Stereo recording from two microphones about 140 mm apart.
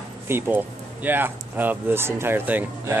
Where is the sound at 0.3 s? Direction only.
15° right (ahead or behind).